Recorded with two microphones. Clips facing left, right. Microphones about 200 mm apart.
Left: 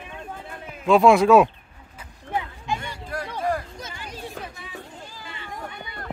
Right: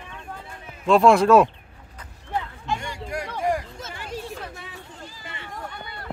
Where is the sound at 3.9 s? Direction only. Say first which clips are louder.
Right 4 dB; 65° right (ahead or behind).